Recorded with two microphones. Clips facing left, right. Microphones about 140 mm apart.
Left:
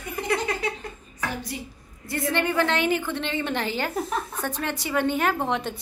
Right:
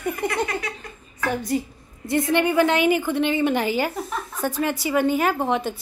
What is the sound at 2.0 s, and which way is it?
A woman's voice, 15° right (ahead or behind).